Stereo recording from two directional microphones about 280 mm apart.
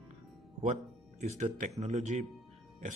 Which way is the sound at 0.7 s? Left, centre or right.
Right.